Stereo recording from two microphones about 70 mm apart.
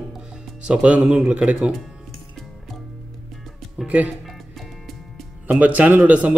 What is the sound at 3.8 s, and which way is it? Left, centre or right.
Speech, centre.